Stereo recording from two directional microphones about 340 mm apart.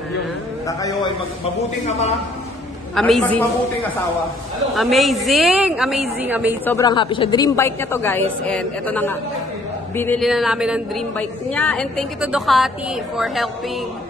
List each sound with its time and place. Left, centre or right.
0.7 s a woman's voice: centre
2.9 s a woman's voice: centre
4.7 s a woman's voice: centre
6.6 s a woman's voice: centre